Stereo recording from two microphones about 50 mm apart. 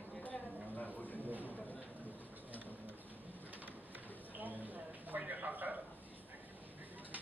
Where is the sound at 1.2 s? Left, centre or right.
Right.